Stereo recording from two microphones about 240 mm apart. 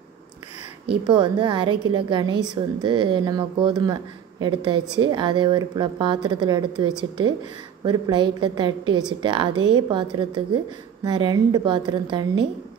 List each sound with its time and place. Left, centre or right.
0.8 s a woman's voice: centre